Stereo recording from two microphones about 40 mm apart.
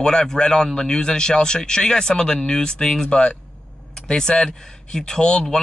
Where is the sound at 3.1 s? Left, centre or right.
Left.